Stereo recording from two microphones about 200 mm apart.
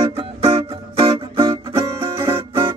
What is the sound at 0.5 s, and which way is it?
Music, 30° right (ahead or behind).